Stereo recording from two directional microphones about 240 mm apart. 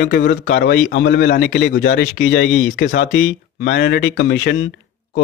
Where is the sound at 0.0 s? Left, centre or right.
Left.